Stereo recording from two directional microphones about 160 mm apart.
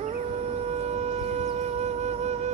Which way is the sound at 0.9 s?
40° right (ahead or behind).